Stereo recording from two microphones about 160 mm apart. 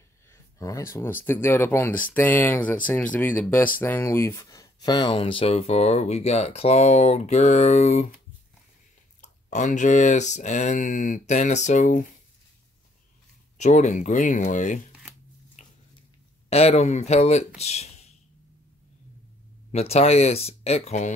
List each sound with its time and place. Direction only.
0.3 s speech: 20° left (ahead or behind); by 8.1 s 45° left (ahead or behind)
9.2 s speech: 50° left (ahead or behind)
13.6 s speech: 45° left (ahead or behind)
15.6 s a sound: 50° left (ahead or behind)
16.4 s speech: 40° left (ahead or behind)
19.7 s speech: 40° left (ahead or behind)